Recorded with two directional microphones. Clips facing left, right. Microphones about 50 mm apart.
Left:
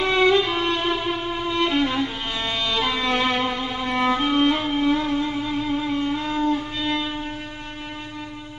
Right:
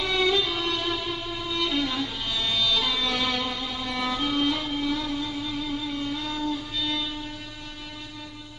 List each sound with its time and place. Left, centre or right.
0.0 s violin: left